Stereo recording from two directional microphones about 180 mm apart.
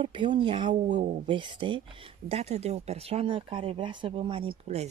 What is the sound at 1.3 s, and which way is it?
Speech, 25° right (ahead or behind).